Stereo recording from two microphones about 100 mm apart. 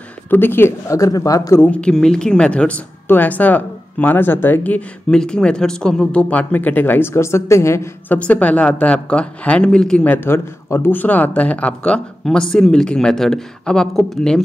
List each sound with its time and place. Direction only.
0.3 s speech: 20° left (ahead or behind)
1.6 s a woman's voice: 10° left (ahead or behind); by 7.9 s 30° left (ahead or behind)
8.1 s a woman's voice: 15° left (ahead or behind)